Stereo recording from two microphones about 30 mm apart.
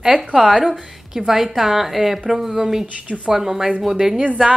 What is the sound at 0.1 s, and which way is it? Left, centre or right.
Speech, right.